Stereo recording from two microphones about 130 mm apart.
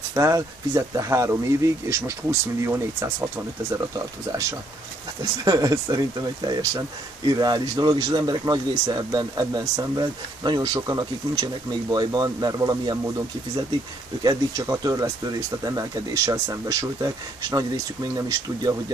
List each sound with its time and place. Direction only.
0.1 s speech: 25° right (ahead or behind)
5.2 s speech: 30° right (ahead or behind)
14.2 s speech: 30° right (ahead or behind)